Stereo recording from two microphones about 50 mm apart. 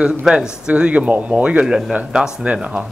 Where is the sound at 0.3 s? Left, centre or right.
Centre.